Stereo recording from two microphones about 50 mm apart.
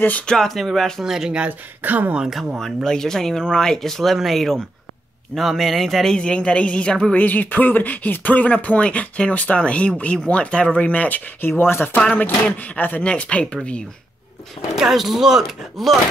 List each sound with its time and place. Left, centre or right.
0.3 s speech: centre
1.0 s speech: centre
1.8 s speech: right
2.2 s speech: centre
2.8 s speech: centre
6.1 s speech: centre
7.2 s speech: left
13.0 s speech: left
14.8 s speech: centre